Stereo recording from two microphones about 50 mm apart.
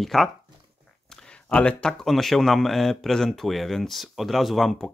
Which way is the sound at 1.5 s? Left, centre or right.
Left.